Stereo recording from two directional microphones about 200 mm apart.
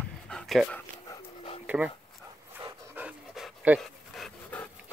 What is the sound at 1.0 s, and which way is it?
Dog, 15° left (ahead or behind).